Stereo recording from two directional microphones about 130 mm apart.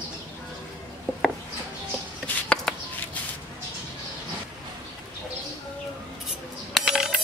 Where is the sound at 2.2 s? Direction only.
10° left (ahead or behind).